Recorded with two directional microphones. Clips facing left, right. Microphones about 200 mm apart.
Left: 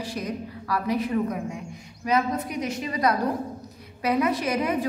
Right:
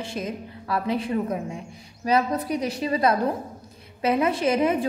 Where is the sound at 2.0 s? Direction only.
35° right (ahead or behind).